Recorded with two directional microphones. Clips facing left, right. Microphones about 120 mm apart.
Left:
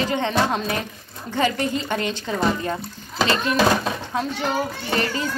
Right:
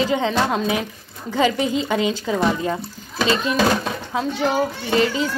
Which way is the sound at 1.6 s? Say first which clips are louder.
Right 3 dB; 90° right.